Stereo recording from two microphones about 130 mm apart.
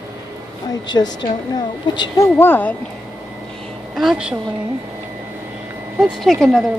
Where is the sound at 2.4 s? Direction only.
15° left (ahead or behind).